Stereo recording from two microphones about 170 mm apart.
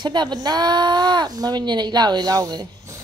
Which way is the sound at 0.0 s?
25° right (ahead or behind).